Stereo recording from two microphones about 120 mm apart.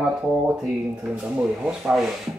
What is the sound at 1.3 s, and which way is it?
Speech, 5° right (ahead or behind).